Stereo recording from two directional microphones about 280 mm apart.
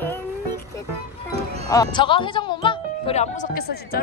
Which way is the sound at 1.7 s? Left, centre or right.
Centre.